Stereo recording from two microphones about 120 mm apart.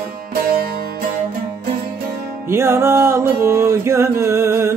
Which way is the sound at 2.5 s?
20° right (ahead or behind).